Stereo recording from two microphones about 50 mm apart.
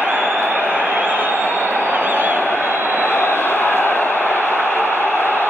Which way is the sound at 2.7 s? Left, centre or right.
Right.